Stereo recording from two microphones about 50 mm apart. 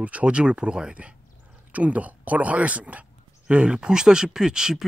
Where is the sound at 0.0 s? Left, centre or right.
Right.